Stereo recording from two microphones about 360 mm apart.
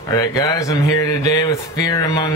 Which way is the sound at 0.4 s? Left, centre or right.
Centre.